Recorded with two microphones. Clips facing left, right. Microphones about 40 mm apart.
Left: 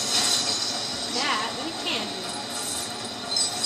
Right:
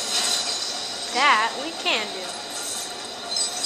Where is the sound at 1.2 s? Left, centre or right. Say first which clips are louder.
Right 9 dB; right.